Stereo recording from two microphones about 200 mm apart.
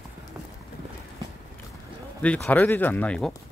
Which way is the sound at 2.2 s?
5° left (ahead or behind).